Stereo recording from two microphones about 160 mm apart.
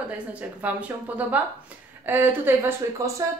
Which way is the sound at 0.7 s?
10° right (ahead or behind).